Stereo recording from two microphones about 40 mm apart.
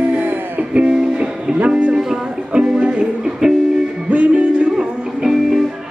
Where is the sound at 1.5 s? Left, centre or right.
Right.